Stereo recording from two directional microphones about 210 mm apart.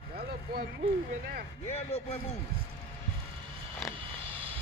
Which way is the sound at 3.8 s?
Centre (ahead or behind).